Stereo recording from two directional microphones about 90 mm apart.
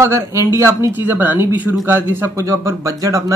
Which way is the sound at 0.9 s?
20° right (ahead or behind).